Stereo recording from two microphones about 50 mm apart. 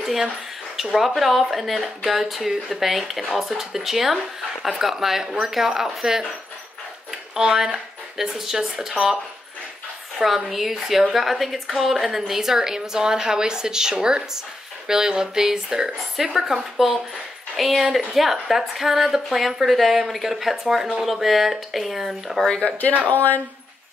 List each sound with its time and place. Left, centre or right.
0.0 s speech: centre
7.3 s speech: centre
22.5 s speech: left
23.0 s speech: left